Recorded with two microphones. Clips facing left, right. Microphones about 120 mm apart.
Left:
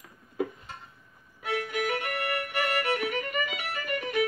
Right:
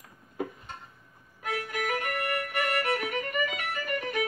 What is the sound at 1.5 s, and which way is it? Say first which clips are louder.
Music: left 2 dB; 40° right (ahead or behind).